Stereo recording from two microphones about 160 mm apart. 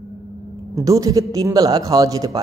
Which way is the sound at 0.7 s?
20° right (ahead or behind).